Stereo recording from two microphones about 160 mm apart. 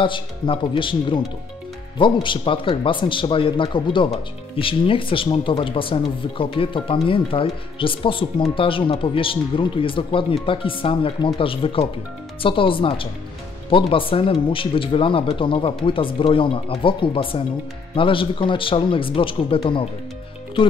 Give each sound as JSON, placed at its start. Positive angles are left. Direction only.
{"t": 0.0, "sound": "speech", "side_deg": 30}